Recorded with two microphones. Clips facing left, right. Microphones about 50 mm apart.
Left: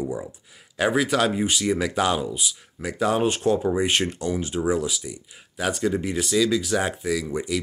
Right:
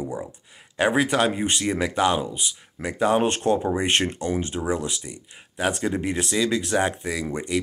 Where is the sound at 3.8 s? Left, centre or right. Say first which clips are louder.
Right 1 dB; right.